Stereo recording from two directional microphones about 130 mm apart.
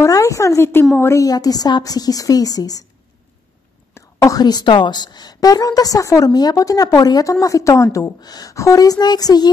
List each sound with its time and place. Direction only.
0.0 s a sound: 25° left (ahead or behind)
0.9 s a woman's voice: 20° left (ahead or behind)
3.9 s a woman's voice: 25° left (ahead or behind)